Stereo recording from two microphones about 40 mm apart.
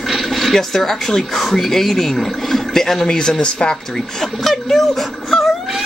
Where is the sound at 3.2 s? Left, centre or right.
Left.